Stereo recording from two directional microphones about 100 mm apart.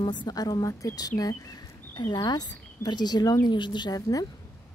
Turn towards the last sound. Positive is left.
turn(degrees=35)  # may be behind; listen again after turning